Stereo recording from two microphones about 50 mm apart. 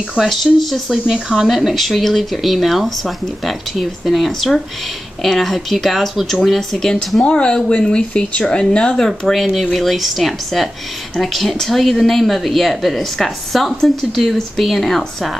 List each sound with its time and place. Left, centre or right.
0.2 s speech: centre
1.0 s speech: centre
7.2 s speech: centre
9.3 s speech: centre